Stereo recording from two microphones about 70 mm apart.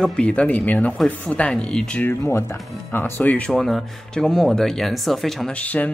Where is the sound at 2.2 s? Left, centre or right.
Left.